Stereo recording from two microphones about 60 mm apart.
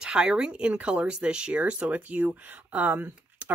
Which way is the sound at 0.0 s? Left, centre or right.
Centre.